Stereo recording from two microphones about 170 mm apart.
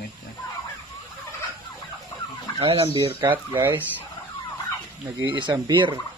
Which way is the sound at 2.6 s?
35° right (ahead or behind).